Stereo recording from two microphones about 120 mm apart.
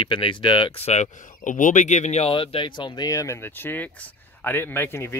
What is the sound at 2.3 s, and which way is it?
Speech, 45° left (ahead or behind).